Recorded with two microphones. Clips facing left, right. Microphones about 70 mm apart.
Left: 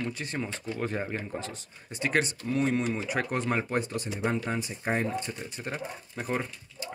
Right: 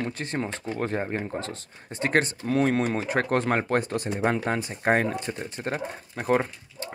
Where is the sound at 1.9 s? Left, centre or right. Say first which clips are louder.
Right 4 dB; right.